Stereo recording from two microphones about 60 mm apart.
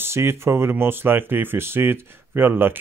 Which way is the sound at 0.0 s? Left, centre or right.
Right.